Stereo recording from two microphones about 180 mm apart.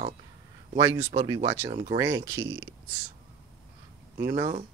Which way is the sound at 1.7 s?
35° right (ahead or behind).